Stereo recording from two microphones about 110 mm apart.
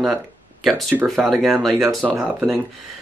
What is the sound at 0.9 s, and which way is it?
Speech, 15° right (ahead or behind).